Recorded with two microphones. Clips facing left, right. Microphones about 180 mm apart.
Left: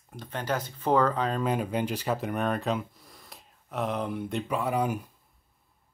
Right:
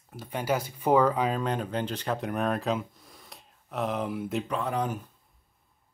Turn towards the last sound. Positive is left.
turn(degrees=10)  # may be behind; listen again after turning